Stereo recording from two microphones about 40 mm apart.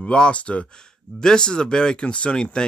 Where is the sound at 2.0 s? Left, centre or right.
Left.